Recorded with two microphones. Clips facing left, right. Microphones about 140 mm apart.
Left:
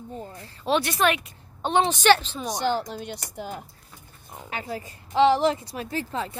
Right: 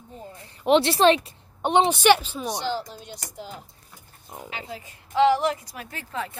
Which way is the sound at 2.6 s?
60° left (ahead or behind).